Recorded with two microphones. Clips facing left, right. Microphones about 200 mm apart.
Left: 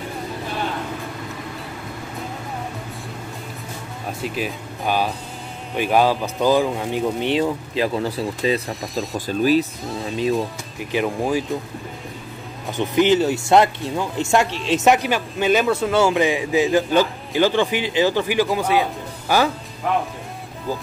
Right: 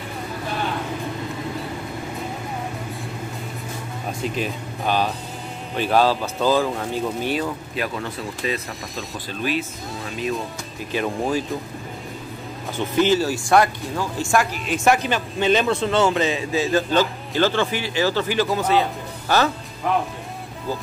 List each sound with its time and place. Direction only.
4.2 s speech: 10° left (ahead or behind); by 10.4 s 30° left (ahead or behind)
11.1 s speech: 10° left (ahead or behind)
12.7 s speech: 20° left (ahead or behind)